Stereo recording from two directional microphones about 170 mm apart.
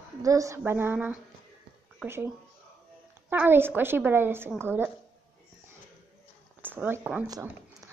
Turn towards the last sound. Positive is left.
turn(degrees=-5)  # may be behind; listen again after turning